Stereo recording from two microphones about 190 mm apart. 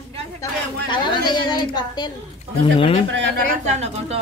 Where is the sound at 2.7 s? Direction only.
30° left (ahead or behind).